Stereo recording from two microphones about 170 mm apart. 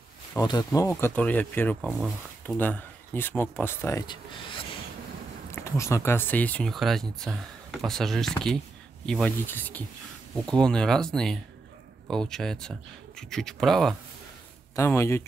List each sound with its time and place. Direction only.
0.4 s speech: 25° left (ahead or behind)
1.8 s speech: centre (ahead or behind)
2.4 s speech: 10° left (ahead or behind)
5.5 s speech: 15° left (ahead or behind)
14.8 s speech: 15° left (ahead or behind)